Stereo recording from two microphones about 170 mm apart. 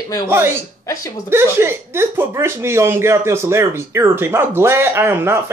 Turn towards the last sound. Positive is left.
turn(degrees=-15)  # may be behind; listen again after turning